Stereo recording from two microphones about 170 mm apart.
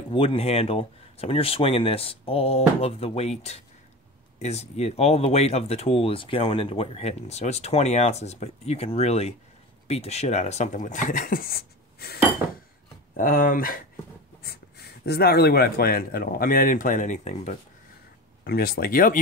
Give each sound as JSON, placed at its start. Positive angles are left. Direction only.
{"t": 0.1, "sound": "speech", "side_deg": 30}
{"t": 14.4, "sound": "speech", "side_deg": 70}
{"t": 18.4, "sound": "speech", "side_deg": 60}